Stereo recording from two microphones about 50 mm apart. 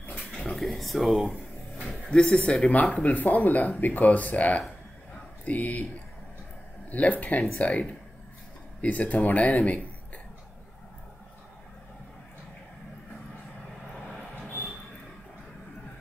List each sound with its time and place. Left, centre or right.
0.1 s a sound: centre
0.6 s speech: centre
2.0 s speech: centre; by 5.8 s left
6.9 s speech: left